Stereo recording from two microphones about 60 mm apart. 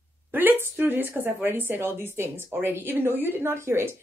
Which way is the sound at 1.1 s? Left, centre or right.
Right.